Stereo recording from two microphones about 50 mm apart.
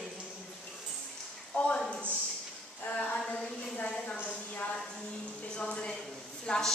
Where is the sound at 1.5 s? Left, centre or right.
Left.